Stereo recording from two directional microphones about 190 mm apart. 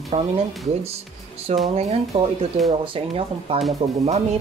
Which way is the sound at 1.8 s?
35° right (ahead or behind).